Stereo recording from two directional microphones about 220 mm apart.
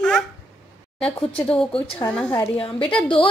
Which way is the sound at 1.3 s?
5° left (ahead or behind).